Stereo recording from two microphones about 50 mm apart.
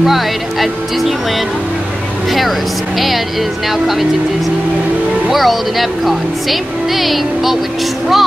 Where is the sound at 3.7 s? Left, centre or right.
Centre.